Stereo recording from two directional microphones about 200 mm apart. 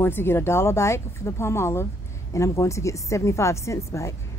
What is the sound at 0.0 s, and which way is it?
A woman's voice, 10° left (ahead or behind).